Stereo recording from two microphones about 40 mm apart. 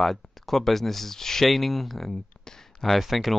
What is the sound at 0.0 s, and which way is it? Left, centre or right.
Speech, centre.